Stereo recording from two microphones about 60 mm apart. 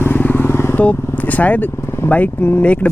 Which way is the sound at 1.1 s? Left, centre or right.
Left.